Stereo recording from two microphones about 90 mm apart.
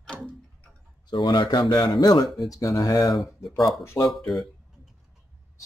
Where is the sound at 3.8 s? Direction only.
30° left (ahead or behind).